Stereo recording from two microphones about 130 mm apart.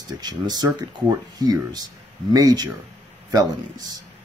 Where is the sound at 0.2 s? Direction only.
30° right (ahead or behind).